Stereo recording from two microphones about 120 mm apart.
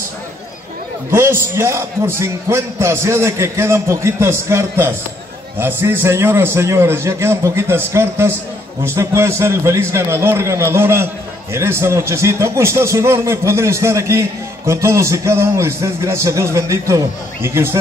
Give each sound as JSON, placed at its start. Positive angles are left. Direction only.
{"t": 1.1, "sound": "a man's voice", "side_deg": -20}